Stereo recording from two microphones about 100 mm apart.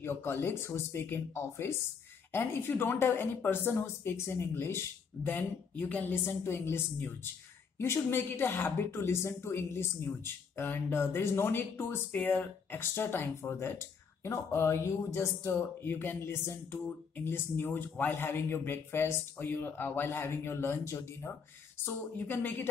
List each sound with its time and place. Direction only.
0.0 s a woman's voice: 20° left (ahead or behind)